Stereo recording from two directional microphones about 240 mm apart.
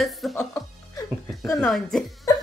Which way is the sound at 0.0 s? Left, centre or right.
Centre.